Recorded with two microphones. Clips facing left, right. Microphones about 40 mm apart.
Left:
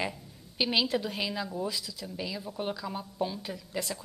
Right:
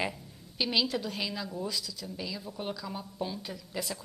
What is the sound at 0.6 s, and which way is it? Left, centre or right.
A woman's voice, centre.